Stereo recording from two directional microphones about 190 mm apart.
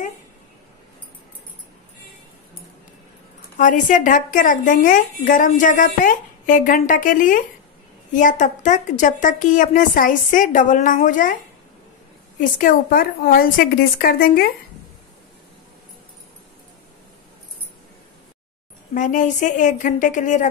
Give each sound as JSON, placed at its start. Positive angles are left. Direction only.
{"t": 3.5, "sound": "a woman's voice", "side_deg": 40}
{"t": 12.4, "sound": "a woman's voice", "side_deg": 45}
{"t": 18.9, "sound": "a woman's voice", "side_deg": 45}